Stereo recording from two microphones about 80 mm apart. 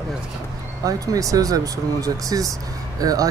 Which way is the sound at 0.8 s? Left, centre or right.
Right.